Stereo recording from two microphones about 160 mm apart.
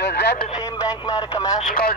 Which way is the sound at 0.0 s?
90° left.